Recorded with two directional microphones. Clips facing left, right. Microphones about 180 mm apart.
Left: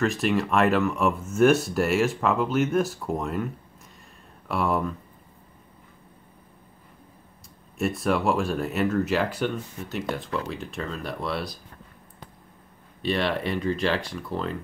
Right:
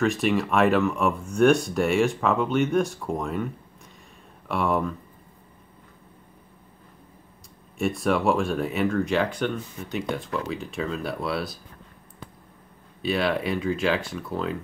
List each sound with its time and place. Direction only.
0.0 s speech: centre (ahead or behind)
4.5 s speech: centre (ahead or behind)
7.8 s speech: centre (ahead or behind)
13.0 s speech: 5° right (ahead or behind)